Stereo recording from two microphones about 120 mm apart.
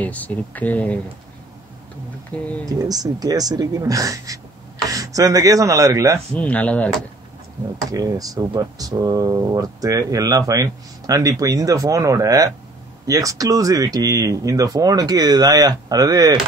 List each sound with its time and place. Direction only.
0.0 s speech: 15° left (ahead or behind)
2.3 s speech: 10° left (ahead or behind)
2.7 s speech: 30° right (ahead or behind)
4.8 s chopping: 30° right (ahead or behind)
6.3 s speech: 10° left (ahead or behind)
7.9 s speech: 30° right (ahead or behind)